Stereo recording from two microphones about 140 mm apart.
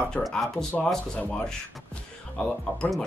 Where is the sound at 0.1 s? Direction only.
5° left (ahead or behind).